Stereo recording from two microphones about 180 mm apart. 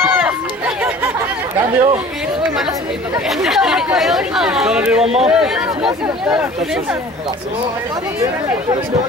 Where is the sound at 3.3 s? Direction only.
Centre (ahead or behind).